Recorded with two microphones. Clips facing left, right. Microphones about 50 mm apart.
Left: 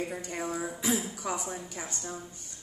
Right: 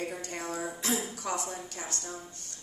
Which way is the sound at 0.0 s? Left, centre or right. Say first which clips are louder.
Left 2 dB; centre.